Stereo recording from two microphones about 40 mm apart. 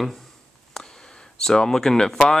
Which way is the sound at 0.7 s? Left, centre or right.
Centre.